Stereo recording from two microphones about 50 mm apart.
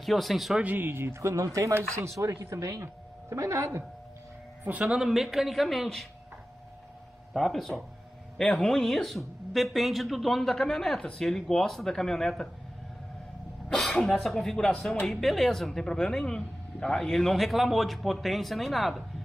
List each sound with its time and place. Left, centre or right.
0.0 s speech: centre
0.7 s speech: right
1.2 s a woman's voice: right
4.8 s speech: centre
7.3 s speech: centre
13.7 s speech: centre